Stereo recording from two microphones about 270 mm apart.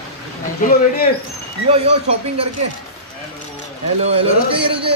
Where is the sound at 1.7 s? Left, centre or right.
Right.